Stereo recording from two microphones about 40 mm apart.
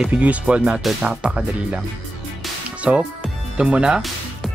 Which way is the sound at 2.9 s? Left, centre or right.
Right.